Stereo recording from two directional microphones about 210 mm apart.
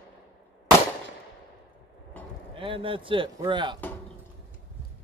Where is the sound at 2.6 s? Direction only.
25° right (ahead or behind).